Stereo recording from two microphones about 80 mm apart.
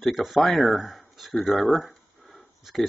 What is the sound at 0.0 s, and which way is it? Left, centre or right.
Speech, centre.